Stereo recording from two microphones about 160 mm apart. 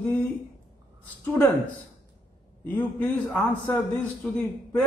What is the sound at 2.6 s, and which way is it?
A man's voice, 10° left (ahead or behind).